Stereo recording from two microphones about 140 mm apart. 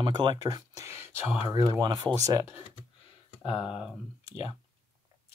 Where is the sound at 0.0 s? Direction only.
30° right (ahead or behind); by 1.2 s 15° right (ahead or behind).